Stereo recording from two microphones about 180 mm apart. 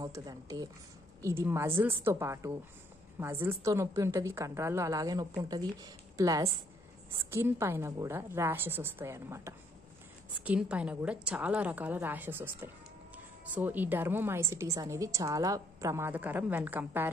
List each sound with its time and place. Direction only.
0.0 s a woman's voice: 20° right (ahead or behind)